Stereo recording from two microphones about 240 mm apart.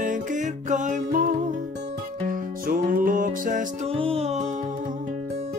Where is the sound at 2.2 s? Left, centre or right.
Right.